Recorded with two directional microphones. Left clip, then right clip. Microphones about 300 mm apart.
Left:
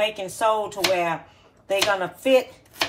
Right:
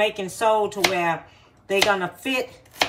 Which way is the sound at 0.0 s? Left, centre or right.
Centre.